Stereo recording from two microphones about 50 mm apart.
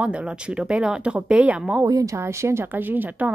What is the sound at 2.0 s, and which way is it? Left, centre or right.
Speech, right.